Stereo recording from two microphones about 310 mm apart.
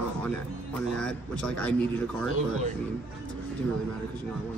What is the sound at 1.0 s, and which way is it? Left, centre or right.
Speech, centre.